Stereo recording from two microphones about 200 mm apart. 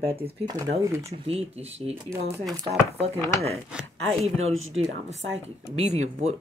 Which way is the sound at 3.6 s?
5° right (ahead or behind).